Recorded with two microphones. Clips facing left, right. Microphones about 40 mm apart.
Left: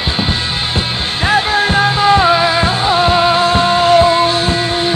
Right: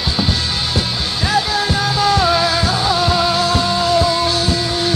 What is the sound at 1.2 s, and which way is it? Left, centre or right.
Music, left.